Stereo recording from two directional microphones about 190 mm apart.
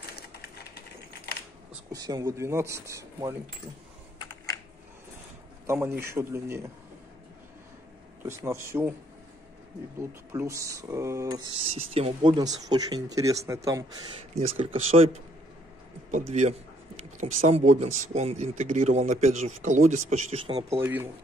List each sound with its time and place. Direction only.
0.1 s a sound: 55° left (ahead or behind)
1.3 s camera: 60° left (ahead or behind)
1.9 s speech: 20° right (ahead or behind)
4.2 s typing: 20° left (ahead or behind)
5.7 s speech: 15° right (ahead or behind)
8.2 s speech: 15° right (ahead or behind)
9.9 s speech: 15° right (ahead or behind)
14.1 s speech: 30° right (ahead or behind)
16.1 s speech: 40° right (ahead or behind)
20.8 s speech: 10° right (ahead or behind)